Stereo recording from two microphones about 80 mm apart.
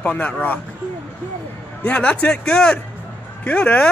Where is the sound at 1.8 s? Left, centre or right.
Centre.